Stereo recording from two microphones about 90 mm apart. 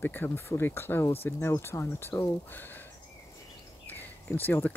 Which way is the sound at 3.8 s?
20° left (ahead or behind).